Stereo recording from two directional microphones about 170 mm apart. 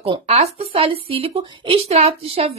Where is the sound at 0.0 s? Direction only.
35° right (ahead or behind).